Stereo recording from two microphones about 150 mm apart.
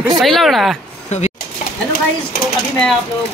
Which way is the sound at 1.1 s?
50° left (ahead or behind).